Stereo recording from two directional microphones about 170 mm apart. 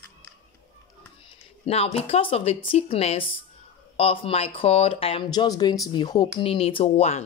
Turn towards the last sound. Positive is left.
turn(degrees=35)  # may be behind; listen again after turning